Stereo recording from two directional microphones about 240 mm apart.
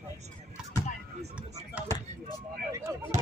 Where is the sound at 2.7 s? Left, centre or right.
Centre.